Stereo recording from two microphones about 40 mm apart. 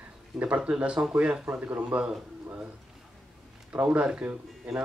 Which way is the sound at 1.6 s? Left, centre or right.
Right.